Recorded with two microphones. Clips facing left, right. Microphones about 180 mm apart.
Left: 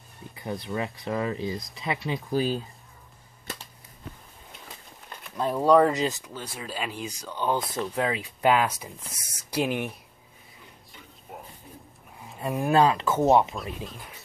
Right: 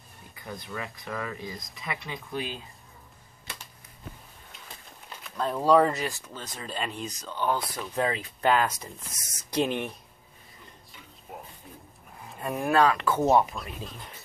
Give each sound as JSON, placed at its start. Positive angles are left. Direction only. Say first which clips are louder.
{"t": 0.4, "sound": "speech", "louder": "left 7 dB", "side_deg": 25}
{"t": 5.2, "sound": "speech", "louder": "left 2 dB", "side_deg": 10}
{"t": 5.9, "sound": "speech", "louder": "left 5 dB", "side_deg": 20}
{"t": 7.9, "sound": "speech", "louder": "right 3 dB", "side_deg": 10}
{"t": 10.9, "sound": "a sound", "louder": "even", "side_deg": 0}
{"t": 12.4, "sound": "speech", "louder": "left 2 dB", "side_deg": 10}
{"t": 12.6, "sound": "speech", "louder": "left 1 dB", "side_deg": 25}
{"t": 13.6, "sound": "speech", "louder": "left 3 dB", "side_deg": 5}